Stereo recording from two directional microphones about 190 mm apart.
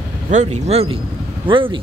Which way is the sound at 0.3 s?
35° right (ahead or behind).